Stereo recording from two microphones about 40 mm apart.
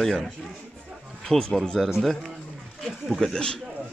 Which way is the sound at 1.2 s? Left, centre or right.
Centre.